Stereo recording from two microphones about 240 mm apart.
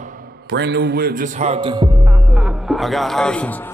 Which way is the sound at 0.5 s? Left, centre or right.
Right.